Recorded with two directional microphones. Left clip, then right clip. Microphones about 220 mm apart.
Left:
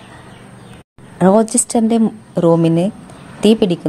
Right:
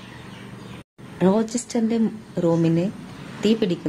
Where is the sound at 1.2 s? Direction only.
25° left (ahead or behind).